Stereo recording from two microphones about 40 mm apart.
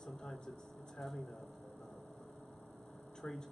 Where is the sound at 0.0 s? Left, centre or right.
Centre.